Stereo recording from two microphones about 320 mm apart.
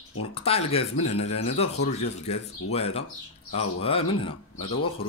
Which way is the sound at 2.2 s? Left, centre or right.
Centre.